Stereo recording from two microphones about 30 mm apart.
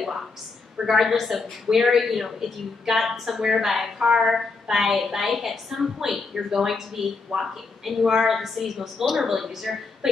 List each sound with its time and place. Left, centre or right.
0.7 s a woman's voice: centre
8.0 s a woman's voice: centre
8.3 s a woman's voice: centre